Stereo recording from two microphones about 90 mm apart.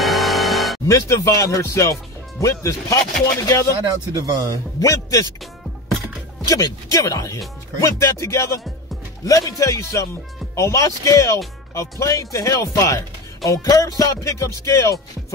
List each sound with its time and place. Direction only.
0.0 s music: centre (ahead or behind)
0.8 s music: 35° left (ahead or behind)
3.9 s speech: 45° right (ahead or behind)
4.7 s music: 40° left (ahead or behind)
6.4 s music: 40° left (ahead or behind)